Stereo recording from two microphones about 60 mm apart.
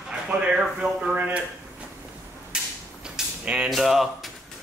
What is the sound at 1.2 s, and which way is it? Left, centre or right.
Speech, right.